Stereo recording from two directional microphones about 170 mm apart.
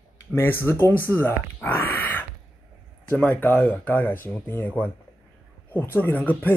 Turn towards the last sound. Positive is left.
turn(degrees=10)  # may be behind; listen again after turning